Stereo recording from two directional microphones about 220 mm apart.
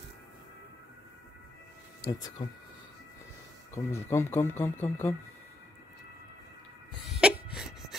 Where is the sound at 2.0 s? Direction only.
15° left (ahead or behind).